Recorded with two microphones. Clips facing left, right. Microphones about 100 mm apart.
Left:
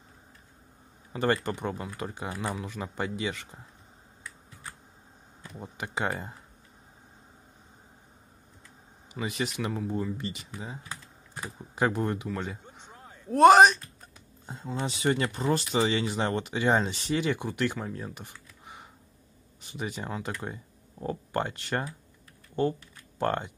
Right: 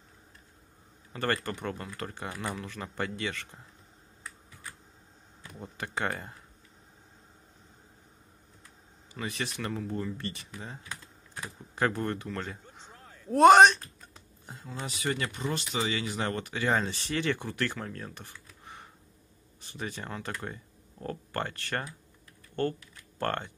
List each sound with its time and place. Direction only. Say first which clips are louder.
1.1 s speech: left 4 dB; 15° left (ahead or behind)
5.6 s speech: left 1 dB; 15° left (ahead or behind)
9.1 s speech: left 4 dB; 15° left (ahead or behind)
13.3 s speech: left 1 dB; centre (ahead or behind)
14.4 s speech: left 6 dB; 25° left (ahead or behind)